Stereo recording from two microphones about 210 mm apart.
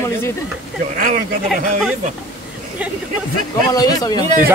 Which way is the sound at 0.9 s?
40° right (ahead or behind).